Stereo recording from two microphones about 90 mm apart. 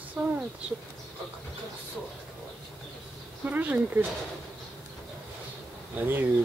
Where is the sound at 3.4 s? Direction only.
20° right (ahead or behind).